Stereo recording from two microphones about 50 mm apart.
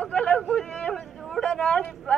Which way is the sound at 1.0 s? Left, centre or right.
Centre.